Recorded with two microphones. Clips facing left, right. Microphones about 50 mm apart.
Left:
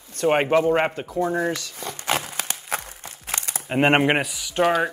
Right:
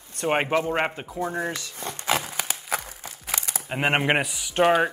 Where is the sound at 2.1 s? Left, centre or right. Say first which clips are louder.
Even; centre.